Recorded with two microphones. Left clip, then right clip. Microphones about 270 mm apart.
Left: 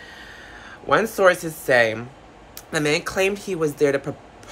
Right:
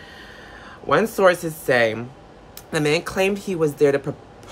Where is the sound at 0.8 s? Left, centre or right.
Centre.